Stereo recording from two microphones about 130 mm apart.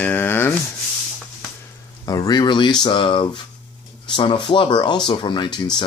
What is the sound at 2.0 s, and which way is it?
Speech, 30° left (ahead or behind).